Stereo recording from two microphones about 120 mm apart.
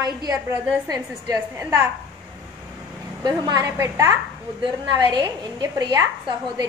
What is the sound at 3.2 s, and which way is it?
A woman's voice, 35° right (ahead or behind).